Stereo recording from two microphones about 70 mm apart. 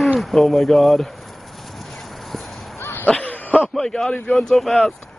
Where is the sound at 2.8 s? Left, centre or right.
Left.